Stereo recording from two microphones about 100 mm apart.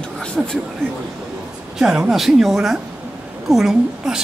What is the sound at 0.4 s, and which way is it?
Speech, centre (ahead or behind).